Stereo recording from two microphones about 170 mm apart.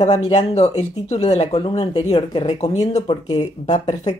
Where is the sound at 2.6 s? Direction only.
40° left (ahead or behind).